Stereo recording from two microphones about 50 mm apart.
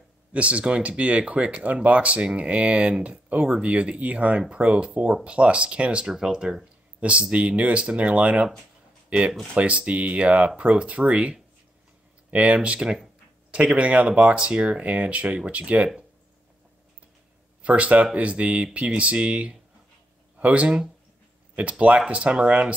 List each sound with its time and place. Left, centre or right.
0.3 s speech: right
9.5 s speech: right
12.5 s speech: centre
17.6 s speech: right